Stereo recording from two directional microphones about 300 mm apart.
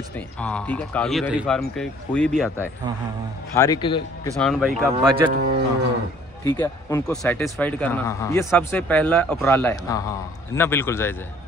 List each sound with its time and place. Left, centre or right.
0.1 s speech: centre
4.4 s speech: centre
4.9 s speech: right
6.4 s speech: centre